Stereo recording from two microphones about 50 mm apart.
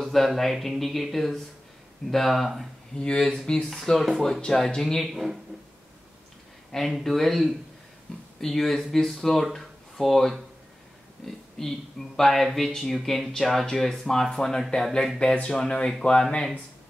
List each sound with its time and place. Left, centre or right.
0.0 s a sound: centre
0.4 s speech: centre
3.0 s speech: centre
5.0 s speech: centre
6.9 s speech: centre